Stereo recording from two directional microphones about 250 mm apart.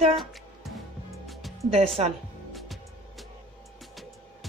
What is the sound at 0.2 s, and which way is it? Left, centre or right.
Music, centre.